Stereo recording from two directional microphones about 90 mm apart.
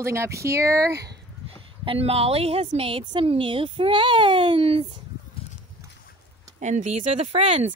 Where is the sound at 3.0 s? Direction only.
75° right (ahead or behind).